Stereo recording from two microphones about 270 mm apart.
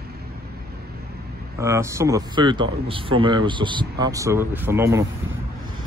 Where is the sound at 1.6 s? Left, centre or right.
Centre.